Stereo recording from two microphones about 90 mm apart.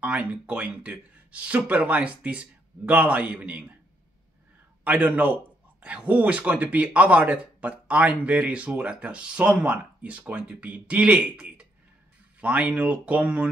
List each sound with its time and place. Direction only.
0.0 s a man's voice: 15° right (ahead or behind)
4.8 s a man's voice: 15° right (ahead or behind)